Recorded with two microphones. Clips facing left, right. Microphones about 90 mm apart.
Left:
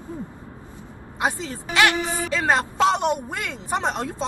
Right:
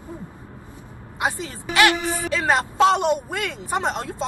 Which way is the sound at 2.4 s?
20° right (ahead or behind).